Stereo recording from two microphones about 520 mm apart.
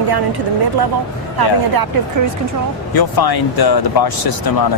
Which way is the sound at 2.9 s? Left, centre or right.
Left.